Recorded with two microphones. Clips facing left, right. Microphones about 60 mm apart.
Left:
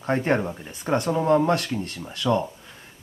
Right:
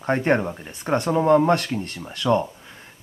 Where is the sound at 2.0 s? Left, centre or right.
Centre.